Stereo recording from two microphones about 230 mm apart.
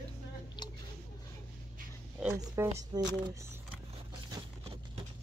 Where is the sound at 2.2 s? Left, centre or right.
Centre.